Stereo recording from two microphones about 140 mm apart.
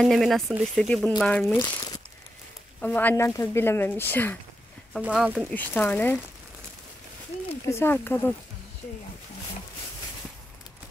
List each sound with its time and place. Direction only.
0.0 s speech: centre (ahead or behind)
1.6 s speech: 30° left (ahead or behind)
2.8 s speech: 10° left (ahead or behind)
5.0 s speech: 10° right (ahead or behind)
5.5 s speech: 15° left (ahead or behind)
7.6 s speech: 20° left (ahead or behind)